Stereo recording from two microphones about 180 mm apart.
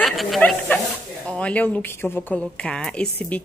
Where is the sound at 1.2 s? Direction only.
5° left (ahead or behind).